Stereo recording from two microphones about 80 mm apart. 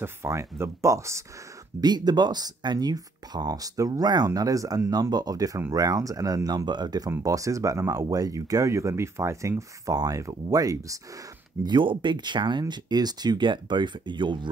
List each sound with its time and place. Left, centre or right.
0.0 s speech: right
1.8 s speech: right
7.2 s speech: right
11.6 s speech: right